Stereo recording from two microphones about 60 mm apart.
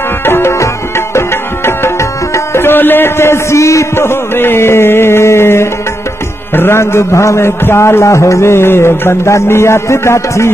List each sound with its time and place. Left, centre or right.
0.2 s music: left
1.7 s tabla: left
2.3 s music: left
6.5 s a sound: left